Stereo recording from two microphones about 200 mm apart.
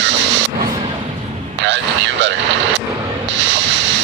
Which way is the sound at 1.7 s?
65° right (ahead or behind).